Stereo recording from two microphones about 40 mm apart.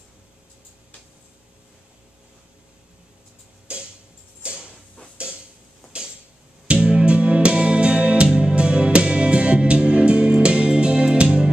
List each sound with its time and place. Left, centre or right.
3.7 s tick-tock: right
4.4 s a sound: right
6.7 s music: right